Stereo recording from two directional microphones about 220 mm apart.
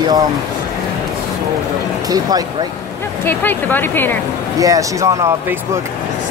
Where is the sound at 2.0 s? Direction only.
15° right (ahead or behind).